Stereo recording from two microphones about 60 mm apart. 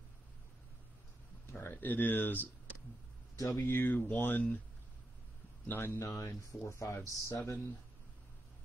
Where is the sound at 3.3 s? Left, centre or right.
Left.